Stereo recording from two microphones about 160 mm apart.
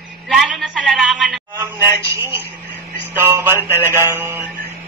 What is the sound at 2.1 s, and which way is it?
Speech, 15° right (ahead or behind).